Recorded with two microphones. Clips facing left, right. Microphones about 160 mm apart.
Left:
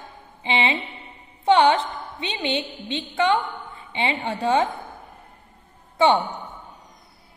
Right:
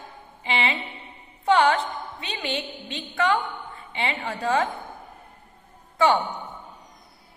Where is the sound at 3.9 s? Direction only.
25° left (ahead or behind).